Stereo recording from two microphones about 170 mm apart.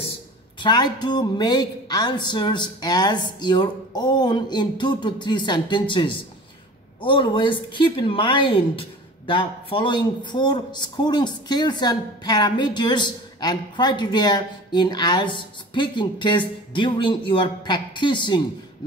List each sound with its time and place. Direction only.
0.6 s speech: 25° left (ahead or behind)